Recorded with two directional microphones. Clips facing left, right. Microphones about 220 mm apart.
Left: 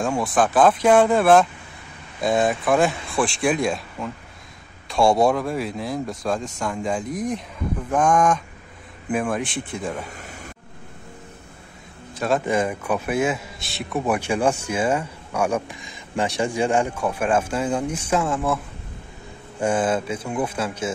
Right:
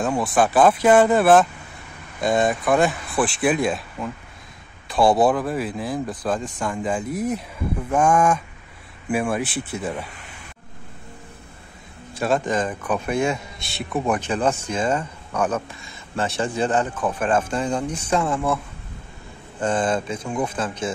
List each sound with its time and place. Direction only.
0.0 s a man's voice: 5° right (ahead or behind)
10.0 s a sound: 45° left (ahead or behind)
12.3 s a man's voice: 10° left (ahead or behind)
19.6 s a man's voice: 10° left (ahead or behind)